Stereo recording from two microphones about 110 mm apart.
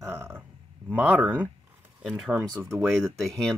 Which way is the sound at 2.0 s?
Centre (ahead or behind).